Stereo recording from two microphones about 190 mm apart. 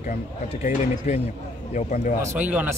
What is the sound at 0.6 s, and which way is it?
Speech, 35° left (ahead or behind).